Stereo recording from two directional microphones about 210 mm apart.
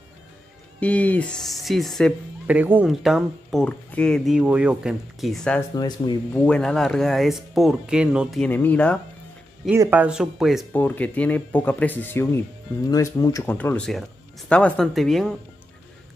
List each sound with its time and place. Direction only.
0.7 s speech: 5° left (ahead or behind)
5.8 s speech: 20° left (ahead or behind)
6.3 s speech: 5° left (ahead or behind)
9.7 s speech: 10° right (ahead or behind)